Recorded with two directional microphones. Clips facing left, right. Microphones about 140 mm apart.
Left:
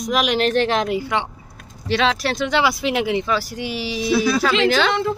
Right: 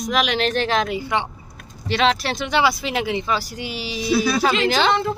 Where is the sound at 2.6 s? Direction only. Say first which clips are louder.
Left 1 dB; 10° left (ahead or behind).